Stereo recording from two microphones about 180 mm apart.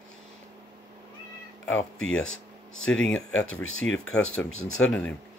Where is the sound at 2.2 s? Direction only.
90° left.